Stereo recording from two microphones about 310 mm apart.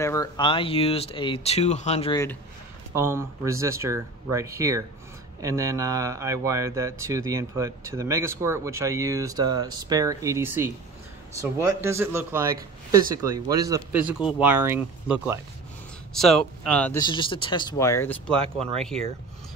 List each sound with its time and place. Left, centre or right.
0.0 s speech: centre
2.9 s speech: centre
11.8 s speech: centre